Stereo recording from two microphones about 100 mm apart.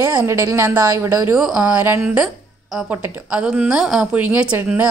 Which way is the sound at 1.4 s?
10° right (ahead or behind).